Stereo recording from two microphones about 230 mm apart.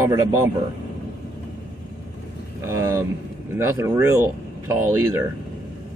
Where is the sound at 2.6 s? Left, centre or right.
Centre.